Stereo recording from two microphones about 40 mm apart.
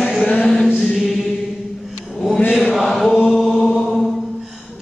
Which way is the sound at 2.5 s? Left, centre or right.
Centre.